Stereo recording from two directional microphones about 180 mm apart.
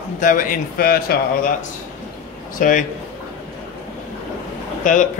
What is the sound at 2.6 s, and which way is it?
Speech, 50° left (ahead or behind).